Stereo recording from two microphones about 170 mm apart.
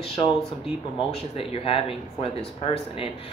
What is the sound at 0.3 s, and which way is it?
Speech, centre (ahead or behind).